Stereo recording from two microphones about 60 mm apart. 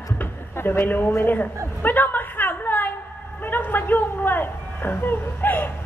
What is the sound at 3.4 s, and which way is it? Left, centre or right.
Music, left.